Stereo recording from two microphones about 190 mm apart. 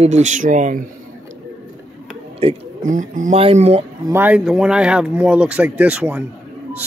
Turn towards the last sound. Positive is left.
turn(degrees=-5)  # may be behind; listen again after turning